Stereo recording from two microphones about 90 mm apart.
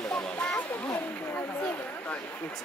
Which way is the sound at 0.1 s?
10° left (ahead or behind).